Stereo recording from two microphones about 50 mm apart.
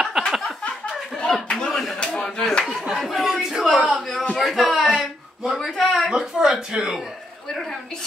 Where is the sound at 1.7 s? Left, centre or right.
Centre.